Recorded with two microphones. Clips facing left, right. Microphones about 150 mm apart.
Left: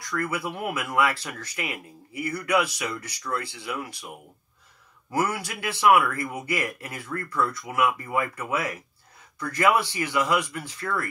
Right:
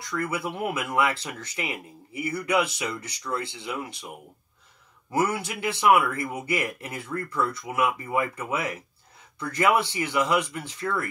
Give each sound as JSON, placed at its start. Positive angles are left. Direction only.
{"t": 0.1, "sound": "speech", "side_deg": -20}
{"t": 5.1, "sound": "speech", "side_deg": -25}